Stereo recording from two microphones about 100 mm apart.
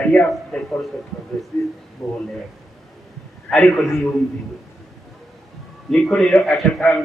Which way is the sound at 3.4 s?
10° left (ahead or behind).